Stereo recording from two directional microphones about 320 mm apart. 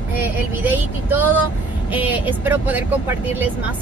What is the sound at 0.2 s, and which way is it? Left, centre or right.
Speech, centre.